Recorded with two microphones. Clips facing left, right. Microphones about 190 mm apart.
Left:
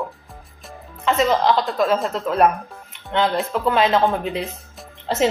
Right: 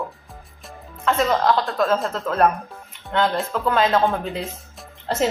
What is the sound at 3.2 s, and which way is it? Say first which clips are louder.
Speech: left 1 dB; centre (ahead or behind).